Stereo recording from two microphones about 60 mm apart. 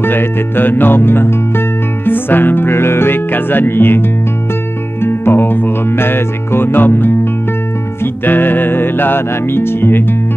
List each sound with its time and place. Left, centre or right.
0.0 s music: left
5.0 s music: left